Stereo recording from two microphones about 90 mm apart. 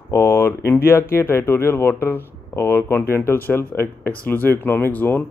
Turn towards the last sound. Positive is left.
turn(degrees=25)  # may be behind; listen again after turning